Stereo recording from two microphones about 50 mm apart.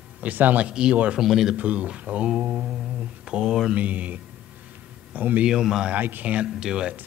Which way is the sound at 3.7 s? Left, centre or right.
Right.